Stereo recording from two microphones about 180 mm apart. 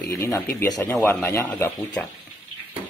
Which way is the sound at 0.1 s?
15° left (ahead or behind).